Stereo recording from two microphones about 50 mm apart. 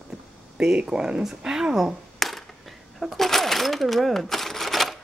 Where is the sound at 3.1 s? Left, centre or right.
Centre.